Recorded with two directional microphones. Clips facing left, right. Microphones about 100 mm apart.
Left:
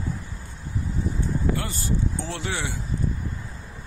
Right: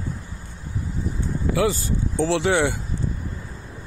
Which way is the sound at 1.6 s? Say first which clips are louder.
Right 6 dB; 90° right.